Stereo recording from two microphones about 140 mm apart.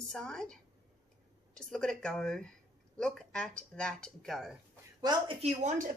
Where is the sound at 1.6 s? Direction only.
5° left (ahead or behind).